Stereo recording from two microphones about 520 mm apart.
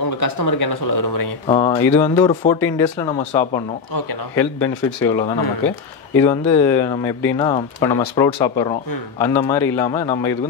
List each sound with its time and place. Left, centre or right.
0.0 s speech: left
1.5 s speech: centre